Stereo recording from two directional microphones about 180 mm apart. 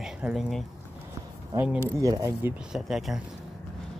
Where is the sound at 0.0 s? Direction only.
5° right (ahead or behind).